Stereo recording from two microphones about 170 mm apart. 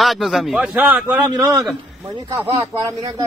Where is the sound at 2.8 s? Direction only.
20° right (ahead or behind).